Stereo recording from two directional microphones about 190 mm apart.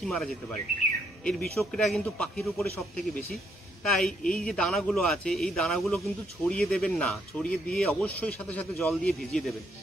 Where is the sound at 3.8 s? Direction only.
Centre (ahead or behind).